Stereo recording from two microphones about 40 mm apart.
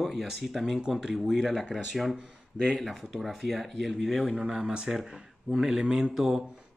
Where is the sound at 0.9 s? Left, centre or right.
Centre.